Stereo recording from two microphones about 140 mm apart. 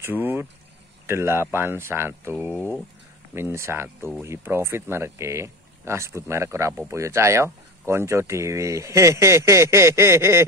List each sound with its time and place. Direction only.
0.0 s speech: 15° right (ahead or behind)
3.3 s speech: 20° right (ahead or behind)